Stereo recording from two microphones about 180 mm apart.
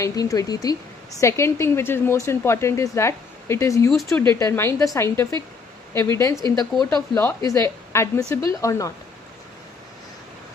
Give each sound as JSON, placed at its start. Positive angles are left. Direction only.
{"t": 0.0, "sound": "a woman's voice", "side_deg": 20}